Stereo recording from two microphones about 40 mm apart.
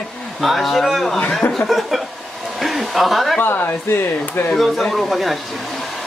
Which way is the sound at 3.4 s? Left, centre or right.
Left.